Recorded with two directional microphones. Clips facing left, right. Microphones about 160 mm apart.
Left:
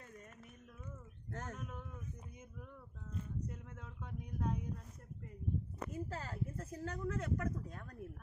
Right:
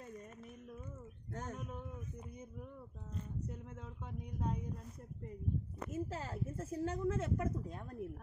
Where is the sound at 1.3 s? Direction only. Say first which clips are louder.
Right 2 dB; 10° right (ahead or behind).